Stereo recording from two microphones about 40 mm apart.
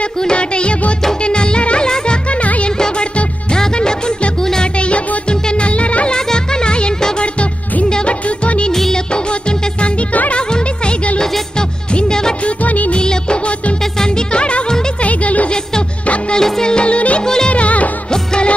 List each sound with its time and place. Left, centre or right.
0.2 s music: left
3.5 s music: centre
4.7 s music: left
6.1 s music: centre
12.4 s music of bollywood: left
12.9 s music: left
16.3 s music: centre; by 17.2 s left
17.2 s music: centre
17.5 s music: left
18.1 s music: centre